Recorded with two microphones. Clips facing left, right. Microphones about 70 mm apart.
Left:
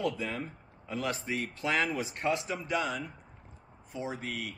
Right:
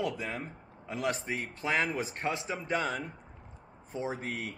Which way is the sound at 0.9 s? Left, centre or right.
Right.